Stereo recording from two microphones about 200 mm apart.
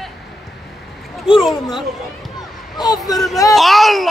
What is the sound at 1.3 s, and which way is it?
Speech, centre (ahead or behind).